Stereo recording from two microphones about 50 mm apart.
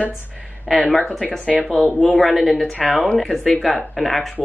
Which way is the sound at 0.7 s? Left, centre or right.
Centre.